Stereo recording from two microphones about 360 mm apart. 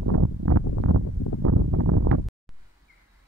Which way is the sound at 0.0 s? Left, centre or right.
Right.